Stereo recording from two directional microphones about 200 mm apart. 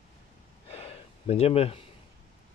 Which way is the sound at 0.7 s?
30° left (ahead or behind).